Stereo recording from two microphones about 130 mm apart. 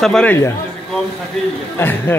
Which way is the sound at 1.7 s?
15° left (ahead or behind).